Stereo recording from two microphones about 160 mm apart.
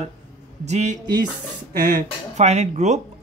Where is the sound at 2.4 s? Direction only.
45° right (ahead or behind).